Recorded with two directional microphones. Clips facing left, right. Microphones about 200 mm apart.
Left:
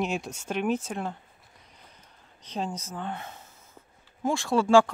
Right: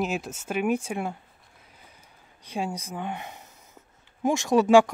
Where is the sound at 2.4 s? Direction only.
10° right (ahead or behind).